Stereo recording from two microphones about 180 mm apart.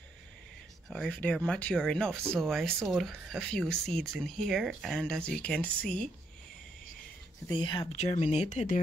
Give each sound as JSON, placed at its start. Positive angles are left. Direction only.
{"t": 0.8, "sound": "speech", "side_deg": 5}
{"t": 7.4, "sound": "speech", "side_deg": 25}
{"t": 7.9, "sound": "speech", "side_deg": 40}